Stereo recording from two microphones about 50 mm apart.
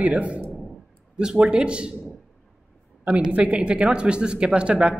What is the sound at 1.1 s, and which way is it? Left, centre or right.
Speech, centre.